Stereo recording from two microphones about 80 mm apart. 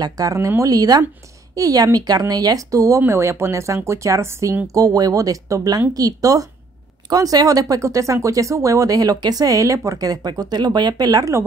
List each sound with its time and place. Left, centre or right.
0.0 s speech: right
3.1 s speech: right
4.6 s speech: right